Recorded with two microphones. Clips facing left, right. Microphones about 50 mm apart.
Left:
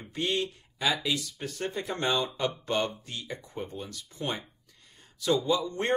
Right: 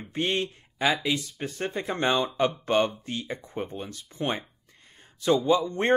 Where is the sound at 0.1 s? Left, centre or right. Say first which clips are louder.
Right 2 dB; right.